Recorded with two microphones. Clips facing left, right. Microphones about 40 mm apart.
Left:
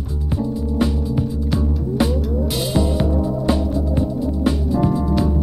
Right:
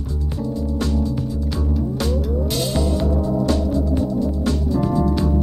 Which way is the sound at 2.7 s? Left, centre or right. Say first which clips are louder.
Left 4 dB; centre.